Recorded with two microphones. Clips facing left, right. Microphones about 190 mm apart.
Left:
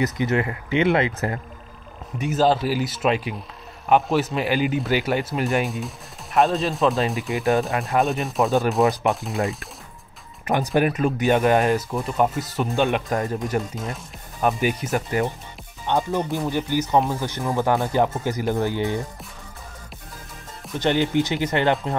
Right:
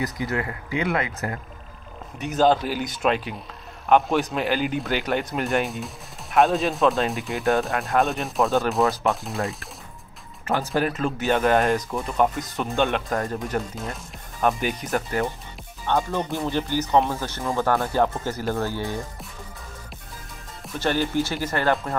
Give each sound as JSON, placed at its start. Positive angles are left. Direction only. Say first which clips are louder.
{"t": 0.0, "sound": "speech", "louder": "left 5 dB", "side_deg": 20}
{"t": 2.1, "sound": "speech", "louder": "even", "side_deg": 5}
{"t": 10.4, "sound": "speech", "louder": "left 3 dB", "side_deg": 15}
{"t": 20.8, "sound": "speech", "louder": "left 3 dB", "side_deg": 20}